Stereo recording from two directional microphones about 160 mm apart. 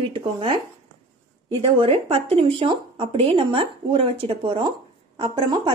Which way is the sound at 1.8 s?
35° right (ahead or behind).